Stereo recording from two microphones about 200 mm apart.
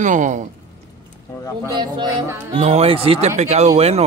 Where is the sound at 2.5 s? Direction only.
35° right (ahead or behind).